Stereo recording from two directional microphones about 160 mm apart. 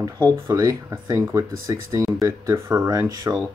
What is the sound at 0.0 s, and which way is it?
Speech, 25° right (ahead or behind).